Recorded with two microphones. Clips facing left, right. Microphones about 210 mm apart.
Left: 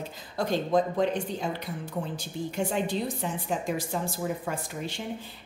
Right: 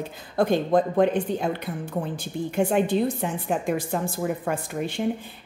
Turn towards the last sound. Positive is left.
turn(degrees=-55)  # may be behind; listen again after turning